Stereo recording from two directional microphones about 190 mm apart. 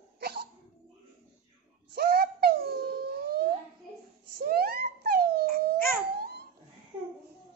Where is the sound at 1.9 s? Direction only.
55° right (ahead or behind).